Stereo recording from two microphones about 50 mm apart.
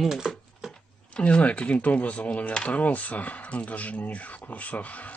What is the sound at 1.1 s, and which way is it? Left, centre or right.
Speech, left.